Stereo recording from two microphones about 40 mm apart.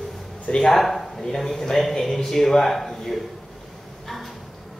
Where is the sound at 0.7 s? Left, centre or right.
Centre.